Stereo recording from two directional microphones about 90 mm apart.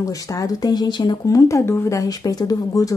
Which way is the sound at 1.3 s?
35° left (ahead or behind).